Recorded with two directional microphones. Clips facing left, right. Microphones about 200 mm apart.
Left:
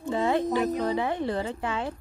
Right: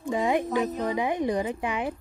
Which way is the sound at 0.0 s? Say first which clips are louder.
Even; 15° right (ahead or behind).